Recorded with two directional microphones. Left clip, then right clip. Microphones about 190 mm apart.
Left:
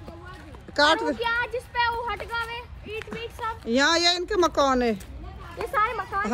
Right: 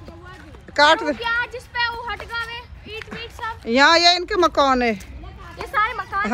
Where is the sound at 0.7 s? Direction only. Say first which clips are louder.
Right 5 dB; 20° left (ahead or behind).